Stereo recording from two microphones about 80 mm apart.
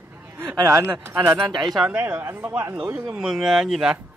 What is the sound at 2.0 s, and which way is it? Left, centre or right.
Speech, right.